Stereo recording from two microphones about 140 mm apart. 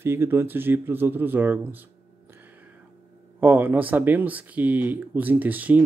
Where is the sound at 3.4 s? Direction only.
15° right (ahead or behind).